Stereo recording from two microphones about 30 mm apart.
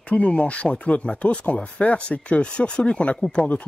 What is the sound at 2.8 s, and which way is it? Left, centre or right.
Speech, left.